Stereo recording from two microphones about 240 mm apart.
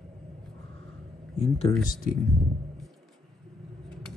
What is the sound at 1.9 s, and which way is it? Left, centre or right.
Speech, left.